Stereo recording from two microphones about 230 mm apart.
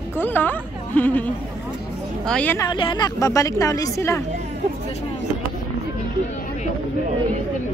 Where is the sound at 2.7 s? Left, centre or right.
Centre.